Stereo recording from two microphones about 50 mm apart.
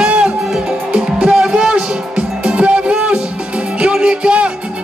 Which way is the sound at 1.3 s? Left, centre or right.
Centre.